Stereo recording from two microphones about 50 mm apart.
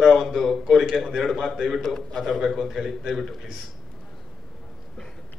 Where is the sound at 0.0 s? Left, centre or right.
Centre.